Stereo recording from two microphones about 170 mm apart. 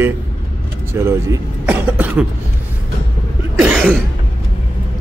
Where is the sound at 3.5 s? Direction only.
5° right (ahead or behind).